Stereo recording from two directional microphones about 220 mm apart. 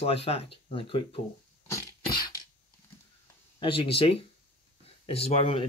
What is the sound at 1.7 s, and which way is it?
Cough, 15° left (ahead or behind).